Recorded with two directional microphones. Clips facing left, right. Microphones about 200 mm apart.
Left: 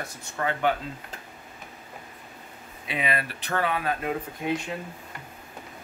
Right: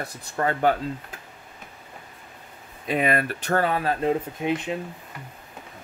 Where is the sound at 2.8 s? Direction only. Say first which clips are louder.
Right 6 dB; 45° right (ahead or behind).